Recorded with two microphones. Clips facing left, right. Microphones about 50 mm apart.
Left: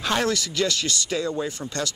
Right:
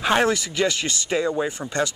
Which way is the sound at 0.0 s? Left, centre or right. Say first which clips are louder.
Right 4 dB; right.